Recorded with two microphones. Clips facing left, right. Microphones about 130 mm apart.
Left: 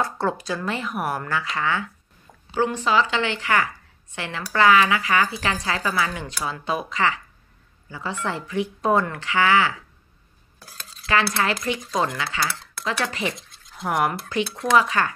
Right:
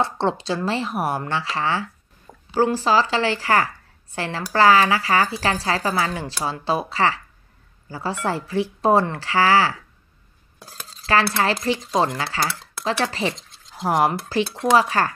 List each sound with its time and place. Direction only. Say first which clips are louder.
0.0 s a woman's voice: right 2 dB; 25° right (ahead or behind)
11.1 s dishes: right 3 dB; 35° right (ahead or behind)
11.4 s a woman's voice: right 3 dB; 30° right (ahead or behind)